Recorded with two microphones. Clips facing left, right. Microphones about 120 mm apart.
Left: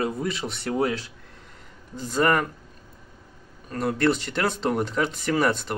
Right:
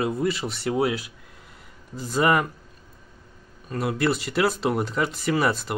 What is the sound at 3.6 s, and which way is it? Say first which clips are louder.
Speech: left 1 dB; 5° right (ahead or behind).